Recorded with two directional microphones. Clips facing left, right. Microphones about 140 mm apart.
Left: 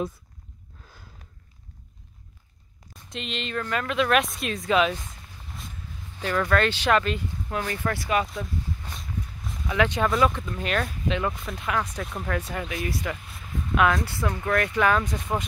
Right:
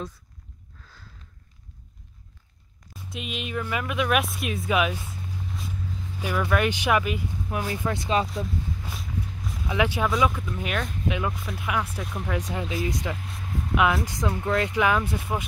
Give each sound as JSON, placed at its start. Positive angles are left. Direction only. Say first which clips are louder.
{"t": 2.9, "sound": "speech", "louder": "even", "side_deg": -5}
{"t": 6.2, "sound": "speech", "louder": "left 1 dB", "side_deg": -10}
{"t": 9.7, "sound": "speech", "louder": "left 1 dB", "side_deg": -10}
{"t": 12.3, "sound": "speech", "louder": "right 1 dB", "side_deg": -15}
{"t": 15.1, "sound": "speech", "louder": "left 1 dB", "side_deg": -5}